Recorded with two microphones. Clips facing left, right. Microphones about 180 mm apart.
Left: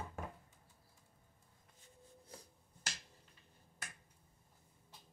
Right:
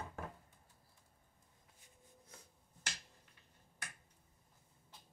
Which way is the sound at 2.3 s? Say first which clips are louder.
Left 6 dB; 35° left (ahead or behind).